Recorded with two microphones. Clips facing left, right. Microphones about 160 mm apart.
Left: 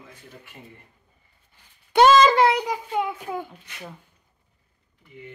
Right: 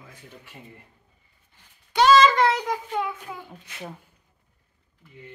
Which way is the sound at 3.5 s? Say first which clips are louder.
Right 2 dB; 25° right (ahead or behind).